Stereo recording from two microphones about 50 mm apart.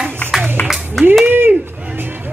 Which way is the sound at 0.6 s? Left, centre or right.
Left.